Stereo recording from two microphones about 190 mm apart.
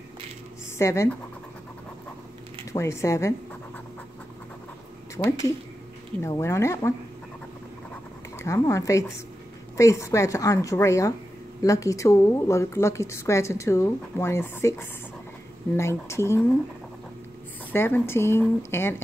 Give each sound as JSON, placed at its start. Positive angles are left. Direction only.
{"t": 0.7, "sound": "a woman's voice", "side_deg": 15}
{"t": 2.7, "sound": "a woman's voice", "side_deg": 15}
{"t": 5.2, "sound": "a woman's voice", "side_deg": 15}
{"t": 7.9, "sound": "scratch", "side_deg": 15}
{"t": 9.8, "sound": "a woman's voice", "side_deg": 15}
{"t": 17.7, "sound": "a woman's voice", "side_deg": 10}